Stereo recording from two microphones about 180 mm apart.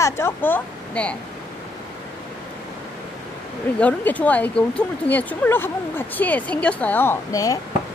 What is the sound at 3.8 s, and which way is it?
Speech, 10° left (ahead or behind).